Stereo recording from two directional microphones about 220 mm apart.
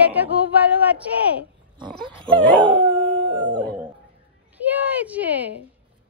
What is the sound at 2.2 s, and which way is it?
Dog, 5° left (ahead or behind).